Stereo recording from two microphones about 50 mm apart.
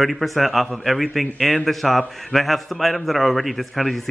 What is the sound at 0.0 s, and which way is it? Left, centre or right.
A man's voice, centre.